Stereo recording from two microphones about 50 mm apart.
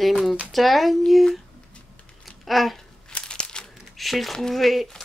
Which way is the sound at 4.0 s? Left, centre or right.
Centre.